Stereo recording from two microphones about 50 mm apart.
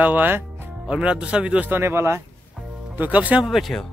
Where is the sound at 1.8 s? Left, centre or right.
Right.